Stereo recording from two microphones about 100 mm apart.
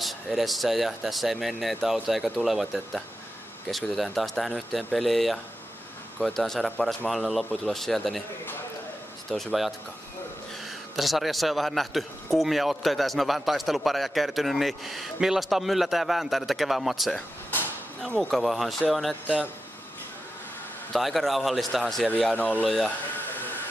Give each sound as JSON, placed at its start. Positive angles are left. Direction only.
{"t": 0.0, "sound": "a man's voice", "side_deg": 0}
{"t": 9.3, "sound": "a man's voice", "side_deg": 0}
{"t": 11.0, "sound": "a man's voice", "side_deg": 0}
{"t": 20.9, "sound": "a man's voice", "side_deg": 0}
{"t": 22.3, "sound": "speech", "side_deg": 15}
{"t": 22.7, "sound": "a man's voice", "side_deg": 0}